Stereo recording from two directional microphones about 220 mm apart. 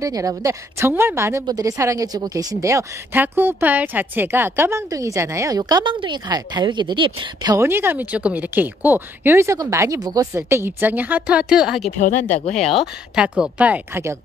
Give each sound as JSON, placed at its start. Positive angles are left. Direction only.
{"t": 0.0, "sound": "a woman's voice", "side_deg": -15}
{"t": 12.0, "sound": "speech", "side_deg": 35}
{"t": 13.1, "sound": "a woman's voice", "side_deg": -5}